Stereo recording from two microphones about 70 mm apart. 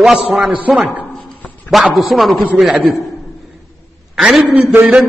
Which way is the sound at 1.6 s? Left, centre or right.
Centre.